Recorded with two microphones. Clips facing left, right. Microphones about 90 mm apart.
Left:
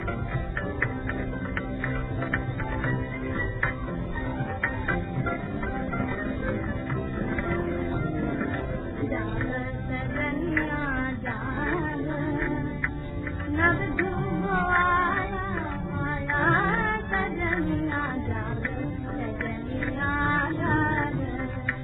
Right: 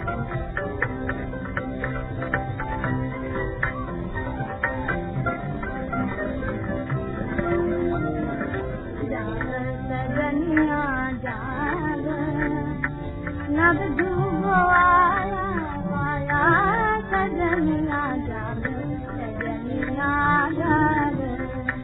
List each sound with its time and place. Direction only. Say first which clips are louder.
7.3 s music: right 8 dB; 45° right (ahead or behind)
10.1 s music: right 7 dB; 50° right (ahead or behind)
12.0 s music: right 4 dB; 50° right (ahead or behind)
12.3 s music: right 2 dB; centre (ahead or behind)
13.6 s music: right 5 dB; 45° right (ahead or behind)
16.4 s music: right 5 dB; 35° right (ahead or behind)
17.5 s music: right 5 dB; 50° right (ahead or behind)
20.1 s child singing: right 6 dB; 40° right (ahead or behind)
20.7 s female singing: right 7 dB; 40° right (ahead or behind)